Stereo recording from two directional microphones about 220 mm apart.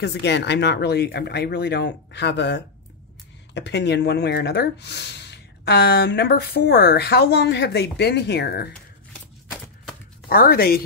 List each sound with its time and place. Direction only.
0.0 s speech: 50° left (ahead or behind)
10.3 s speech: 45° left (ahead or behind)